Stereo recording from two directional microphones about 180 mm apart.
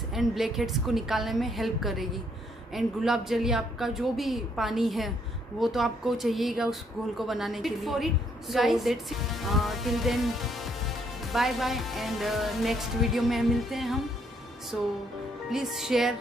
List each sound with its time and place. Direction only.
0.1 s speech: centre (ahead or behind)
15.5 s speech: centre (ahead or behind)